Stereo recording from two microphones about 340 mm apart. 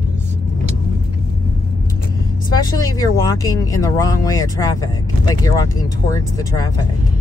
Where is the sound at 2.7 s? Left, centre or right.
Centre.